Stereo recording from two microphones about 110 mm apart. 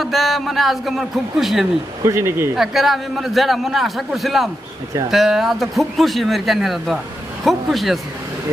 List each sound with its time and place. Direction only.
0.0 s a man's voice: centre (ahead or behind)
2.0 s speech: 25° right (ahead or behind)
2.5 s a man's voice: 5° right (ahead or behind)